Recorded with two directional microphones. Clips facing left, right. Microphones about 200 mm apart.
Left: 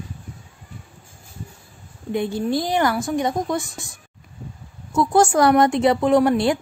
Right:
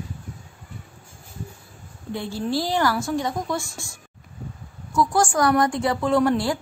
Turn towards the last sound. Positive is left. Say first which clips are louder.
# left 4 dB
turn(degrees=20)  # may be behind; listen again after turning